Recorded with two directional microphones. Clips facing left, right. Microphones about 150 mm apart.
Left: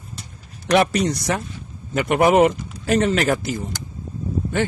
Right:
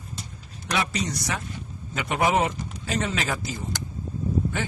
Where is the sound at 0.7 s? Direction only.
60° left (ahead or behind).